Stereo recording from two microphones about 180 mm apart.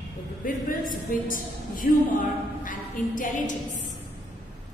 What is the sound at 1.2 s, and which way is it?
A woman's voice, 50° left (ahead or behind).